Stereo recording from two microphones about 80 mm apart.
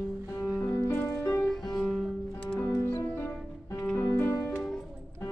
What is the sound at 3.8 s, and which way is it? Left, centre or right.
Music, centre.